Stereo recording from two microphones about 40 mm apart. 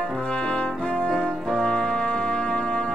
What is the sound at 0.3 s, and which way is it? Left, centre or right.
Brass instrument, left.